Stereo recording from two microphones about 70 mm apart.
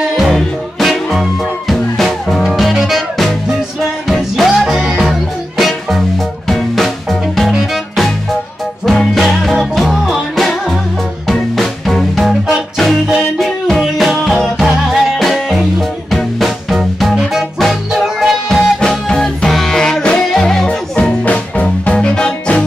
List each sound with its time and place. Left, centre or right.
0.2 s music: centre
20.6 s music: centre